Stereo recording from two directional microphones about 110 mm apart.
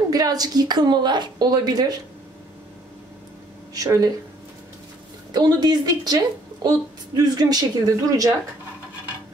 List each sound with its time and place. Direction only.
0.1 s a woman's voice: 35° right (ahead or behind)
3.7 s a woman's voice: 35° right (ahead or behind)
5.3 s a woman's voice: 40° right (ahead or behind)